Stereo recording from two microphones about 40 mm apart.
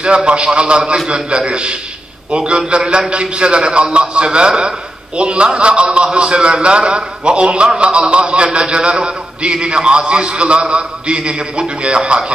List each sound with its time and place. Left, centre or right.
0.0 s a man's voice: right